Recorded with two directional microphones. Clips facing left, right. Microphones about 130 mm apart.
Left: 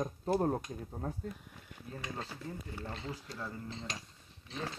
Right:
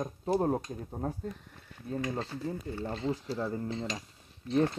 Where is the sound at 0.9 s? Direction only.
30° right (ahead or behind).